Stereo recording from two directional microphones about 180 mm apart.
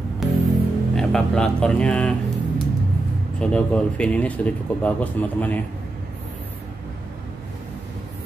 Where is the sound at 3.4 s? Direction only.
5° left (ahead or behind).